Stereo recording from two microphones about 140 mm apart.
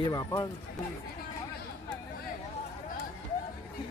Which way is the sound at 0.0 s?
30° left (ahead or behind).